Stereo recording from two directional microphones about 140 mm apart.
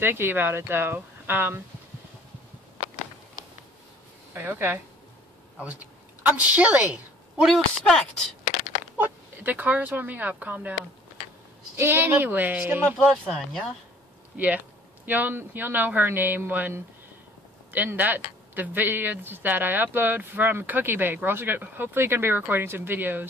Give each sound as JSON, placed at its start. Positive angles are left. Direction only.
{"t": 0.0, "sound": "speech", "side_deg": -15}
{"t": 4.3, "sound": "speech", "side_deg": -15}
{"t": 6.2, "sound": "speech", "side_deg": -10}
{"t": 8.9, "sound": "speech", "side_deg": -10}
{"t": 13.1, "sound": "speech", "side_deg": 0}
{"t": 14.3, "sound": "speech", "side_deg": -10}